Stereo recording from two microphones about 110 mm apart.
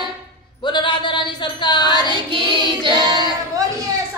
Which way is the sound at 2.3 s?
50° right (ahead or behind).